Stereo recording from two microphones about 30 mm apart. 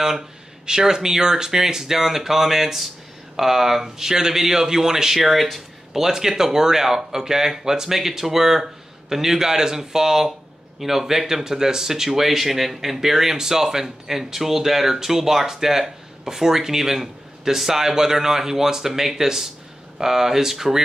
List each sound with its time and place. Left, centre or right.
0.7 s speech: right
5.2 s speech: centre
5.9 s speech: centre